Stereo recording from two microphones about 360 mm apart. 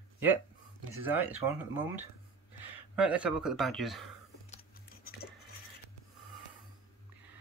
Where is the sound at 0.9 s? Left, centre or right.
Centre.